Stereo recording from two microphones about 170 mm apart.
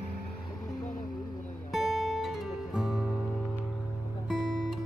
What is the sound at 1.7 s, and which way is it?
Guitar, centre (ahead or behind).